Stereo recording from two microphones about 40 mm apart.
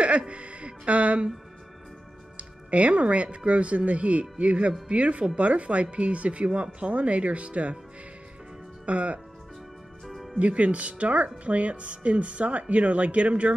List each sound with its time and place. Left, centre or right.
0.3 s music: right
2.3 s speech: right
8.8 s speech: right
10.0 s music: centre
10.4 s speech: right